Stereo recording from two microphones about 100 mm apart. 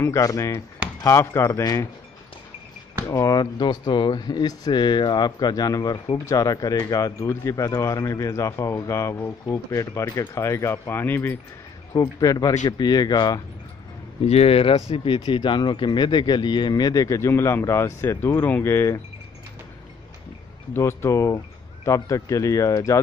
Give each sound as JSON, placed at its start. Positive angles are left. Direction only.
{"t": 0.0, "sound": "speech", "side_deg": 30}
{"t": 3.1, "sound": "speech", "side_deg": 35}
{"t": 11.9, "sound": "speech", "side_deg": 35}
{"t": 14.2, "sound": "speech", "side_deg": 85}
{"t": 20.7, "sound": "speech", "side_deg": 25}